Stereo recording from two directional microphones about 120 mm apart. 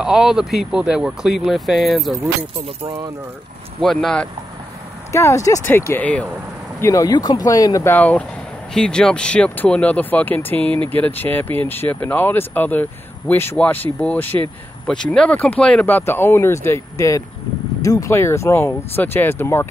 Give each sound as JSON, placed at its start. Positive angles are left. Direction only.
{"t": 0.0, "sound": "speech", "side_deg": -5}
{"t": 3.8, "sound": "speech", "side_deg": 0}
{"t": 5.1, "sound": "speech", "side_deg": 25}
{"t": 6.8, "sound": "speech", "side_deg": 25}